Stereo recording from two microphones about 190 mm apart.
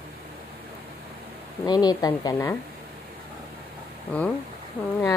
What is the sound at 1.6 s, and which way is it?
Speech, 20° left (ahead or behind).